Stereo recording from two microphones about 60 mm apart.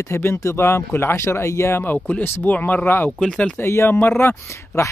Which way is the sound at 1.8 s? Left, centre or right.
Left.